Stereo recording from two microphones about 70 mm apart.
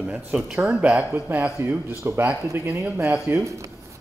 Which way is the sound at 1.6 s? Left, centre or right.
Right.